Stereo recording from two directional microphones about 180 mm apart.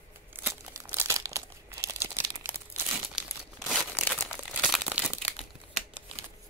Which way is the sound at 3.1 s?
Centre (ahead or behind).